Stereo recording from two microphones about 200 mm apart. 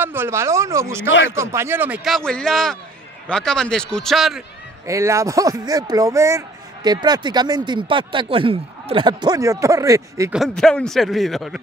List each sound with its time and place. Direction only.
0.0 s a man's voice: 10° right (ahead or behind)
4.8 s speech: 15° right (ahead or behind)
10.3 s a man's voice: centre (ahead or behind)